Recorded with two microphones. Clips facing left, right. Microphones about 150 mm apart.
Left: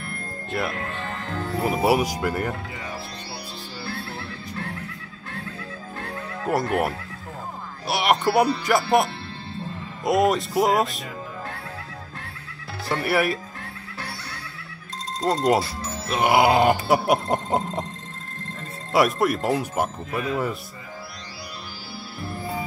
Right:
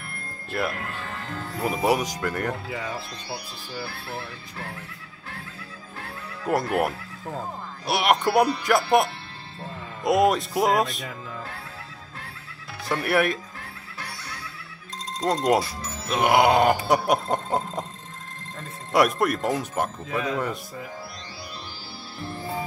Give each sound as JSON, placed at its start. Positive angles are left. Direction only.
{"t": 0.5, "sound": "music", "side_deg": 0}
{"t": 6.0, "sound": "music", "side_deg": 0}
{"t": 7.8, "sound": "speech", "side_deg": 0}
{"t": 8.6, "sound": "music", "side_deg": 0}
{"t": 12.8, "sound": "music", "side_deg": 0}
{"t": 15.2, "sound": "music", "side_deg": 5}
{"t": 15.6, "sound": "music", "side_deg": 30}
{"t": 16.1, "sound": "music", "side_deg": 0}
{"t": 18.9, "sound": "music", "side_deg": 0}
{"t": 22.2, "sound": "music", "side_deg": 10}